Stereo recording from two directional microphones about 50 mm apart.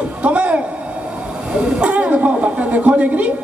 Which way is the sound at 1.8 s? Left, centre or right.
Right.